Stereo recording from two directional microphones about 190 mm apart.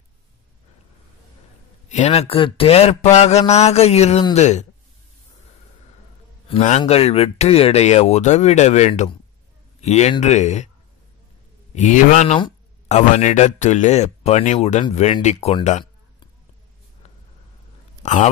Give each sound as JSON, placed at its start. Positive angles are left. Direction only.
{"t": 1.9, "sound": "speech", "side_deg": 35}
{"t": 6.8, "sound": "speech", "side_deg": 30}
{"t": 11.7, "sound": "speech", "side_deg": 40}
{"t": 18.0, "sound": "speech", "side_deg": 40}